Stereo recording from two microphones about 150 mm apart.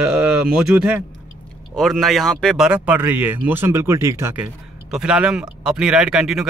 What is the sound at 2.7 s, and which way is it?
Speech, 10° right (ahead or behind).